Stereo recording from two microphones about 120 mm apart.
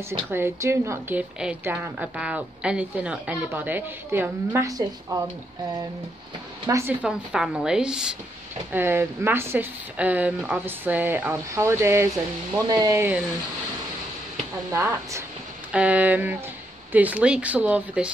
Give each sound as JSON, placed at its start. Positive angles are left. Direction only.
{"t": 0.3, "sound": "a woman's voice", "side_deg": -20}
{"t": 4.5, "sound": "a woman's voice", "side_deg": -30}
{"t": 6.7, "sound": "a woman's voice", "side_deg": -25}
{"t": 7.0, "sound": "a woman's voice", "side_deg": -5}
{"t": 8.7, "sound": "a woman's voice", "side_deg": -20}
{"t": 14.7, "sound": "a woman's voice", "side_deg": -25}
{"t": 15.7, "sound": "speech", "side_deg": -10}